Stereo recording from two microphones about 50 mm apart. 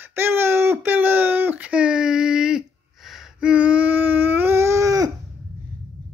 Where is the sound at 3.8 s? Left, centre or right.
Right.